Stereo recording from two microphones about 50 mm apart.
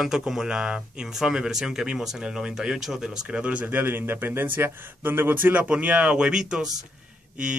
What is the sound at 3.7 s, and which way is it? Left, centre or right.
Speech, right.